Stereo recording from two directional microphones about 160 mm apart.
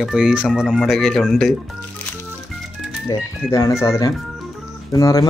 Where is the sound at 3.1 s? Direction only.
20° left (ahead or behind).